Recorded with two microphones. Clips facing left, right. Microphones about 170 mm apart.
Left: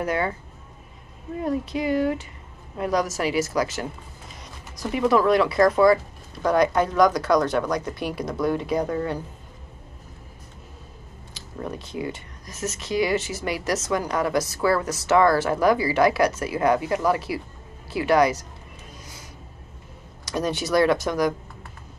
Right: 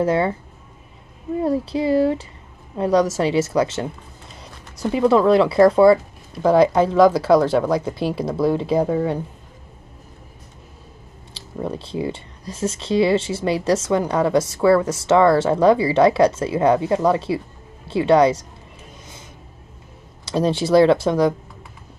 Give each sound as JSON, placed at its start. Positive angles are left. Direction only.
{"t": 0.0, "sound": "speech", "side_deg": -30}
{"t": 1.4, "sound": "speech", "side_deg": -30}
{"t": 11.3, "sound": "speech", "side_deg": -30}
{"t": 20.2, "sound": "speech", "side_deg": -30}